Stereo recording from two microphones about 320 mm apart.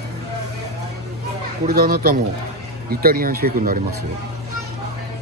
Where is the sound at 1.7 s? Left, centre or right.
Right.